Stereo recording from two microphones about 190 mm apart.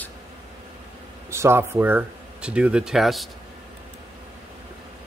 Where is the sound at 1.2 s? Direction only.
15° right (ahead or behind).